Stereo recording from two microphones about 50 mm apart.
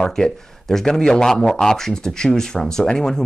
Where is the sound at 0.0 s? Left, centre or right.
Centre.